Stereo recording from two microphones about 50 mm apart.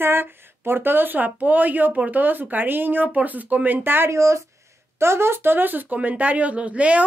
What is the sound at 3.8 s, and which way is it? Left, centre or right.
Speech, right.